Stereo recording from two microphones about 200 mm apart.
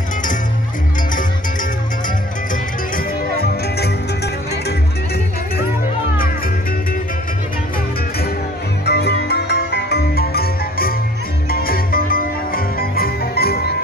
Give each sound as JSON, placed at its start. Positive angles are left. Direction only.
{"t": 8.8, "sound": "music", "side_deg": 55}